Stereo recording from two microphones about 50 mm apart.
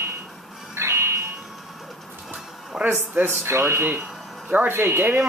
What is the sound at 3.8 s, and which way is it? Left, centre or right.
Speech, right.